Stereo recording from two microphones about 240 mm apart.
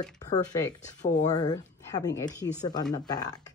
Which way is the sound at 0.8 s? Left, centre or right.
Left.